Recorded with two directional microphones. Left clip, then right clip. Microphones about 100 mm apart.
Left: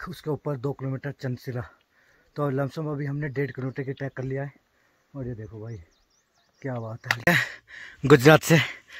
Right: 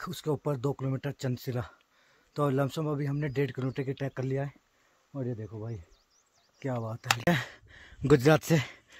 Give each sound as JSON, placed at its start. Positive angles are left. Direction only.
{"t": 0.0, "sound": "speech", "side_deg": -15}
{"t": 5.1, "sound": "speech", "side_deg": -45}
{"t": 5.4, "sound": "speech", "side_deg": -20}
{"t": 6.6, "sound": "speech", "side_deg": -5}
{"t": 7.2, "sound": "a sound", "side_deg": -20}
{"t": 8.2, "sound": "speech", "side_deg": 20}